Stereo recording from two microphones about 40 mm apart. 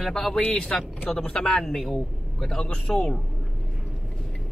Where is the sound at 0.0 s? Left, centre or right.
Centre.